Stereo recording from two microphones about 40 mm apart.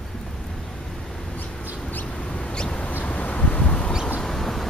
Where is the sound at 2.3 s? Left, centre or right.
Left.